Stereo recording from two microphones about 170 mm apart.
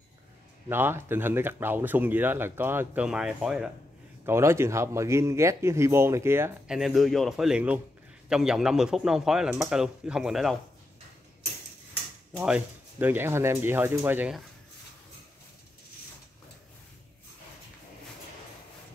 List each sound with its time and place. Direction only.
0.7 s speech: 15° right (ahead or behind)
6.7 s a man's voice: centre (ahead or behind)
12.4 s speech: 10° right (ahead or behind)